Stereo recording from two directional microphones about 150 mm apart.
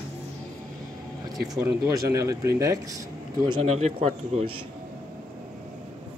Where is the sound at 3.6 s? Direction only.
45° right (ahead or behind).